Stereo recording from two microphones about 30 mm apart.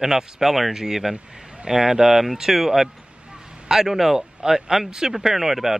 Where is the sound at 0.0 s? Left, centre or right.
Centre.